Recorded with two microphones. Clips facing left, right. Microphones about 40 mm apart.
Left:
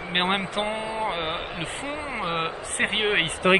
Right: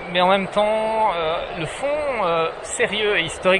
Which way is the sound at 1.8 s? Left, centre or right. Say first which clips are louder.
Right 9 dB; right.